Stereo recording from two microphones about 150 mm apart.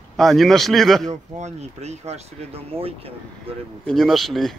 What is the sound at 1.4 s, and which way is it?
Speech, 45° right (ahead or behind).